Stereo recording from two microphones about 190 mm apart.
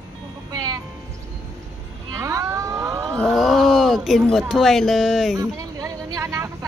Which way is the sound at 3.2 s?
Centre (ahead or behind).